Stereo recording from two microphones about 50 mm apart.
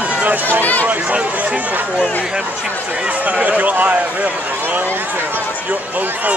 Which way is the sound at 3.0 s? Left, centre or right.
Right.